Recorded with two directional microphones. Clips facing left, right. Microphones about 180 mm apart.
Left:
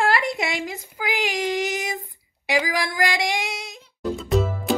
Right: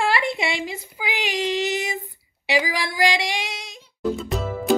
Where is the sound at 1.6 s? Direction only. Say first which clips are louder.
Right 1 dB; 45° left (ahead or behind).